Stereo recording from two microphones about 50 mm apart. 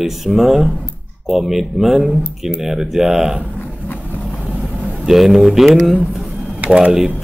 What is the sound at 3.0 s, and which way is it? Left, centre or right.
Speech, right.